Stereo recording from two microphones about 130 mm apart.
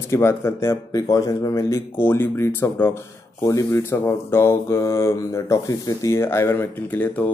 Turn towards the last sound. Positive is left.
turn(degrees=15)  # may be behind; listen again after turning